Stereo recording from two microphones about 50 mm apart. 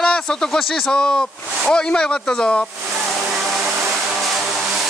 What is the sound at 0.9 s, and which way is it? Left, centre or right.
Speech, centre.